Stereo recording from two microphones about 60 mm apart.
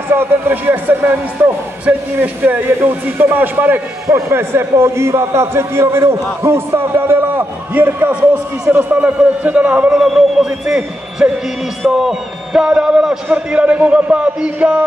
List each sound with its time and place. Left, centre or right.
0.1 s a man's voice: right
4.1 s a man's voice: right
9.0 s a man's voice: right
9.8 s a man's voice: centre
13.5 s a man's voice: right